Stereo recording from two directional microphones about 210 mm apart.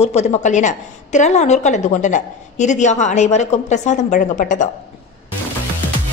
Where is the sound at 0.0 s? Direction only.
30° left (ahead or behind).